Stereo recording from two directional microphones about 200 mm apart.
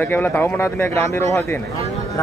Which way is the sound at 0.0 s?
10° left (ahead or behind).